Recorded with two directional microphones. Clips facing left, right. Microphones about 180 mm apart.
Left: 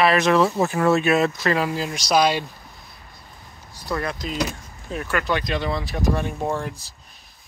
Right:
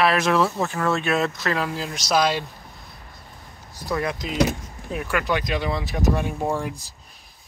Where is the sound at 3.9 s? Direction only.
15° right (ahead or behind).